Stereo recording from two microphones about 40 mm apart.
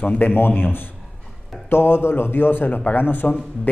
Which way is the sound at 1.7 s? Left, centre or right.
Left.